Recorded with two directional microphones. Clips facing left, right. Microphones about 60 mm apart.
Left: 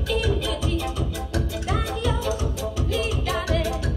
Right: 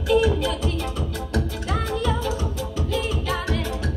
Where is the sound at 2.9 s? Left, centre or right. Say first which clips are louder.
Right 1 dB; centre.